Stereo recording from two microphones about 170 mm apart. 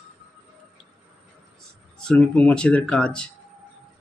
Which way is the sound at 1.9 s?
5° left (ahead or behind).